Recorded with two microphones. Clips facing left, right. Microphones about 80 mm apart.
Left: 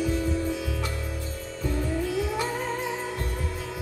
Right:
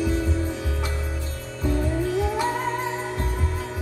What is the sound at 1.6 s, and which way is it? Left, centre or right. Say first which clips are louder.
Music: right 4 dB; right.